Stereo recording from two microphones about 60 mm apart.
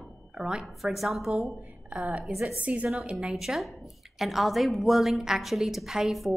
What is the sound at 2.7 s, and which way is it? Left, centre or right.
Speech, right.